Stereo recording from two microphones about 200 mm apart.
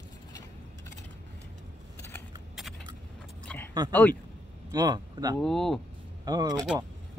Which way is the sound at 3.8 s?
20° right (ahead or behind).